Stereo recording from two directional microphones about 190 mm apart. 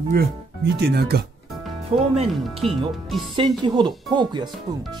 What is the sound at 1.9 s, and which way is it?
Speech, 35° right (ahead or behind).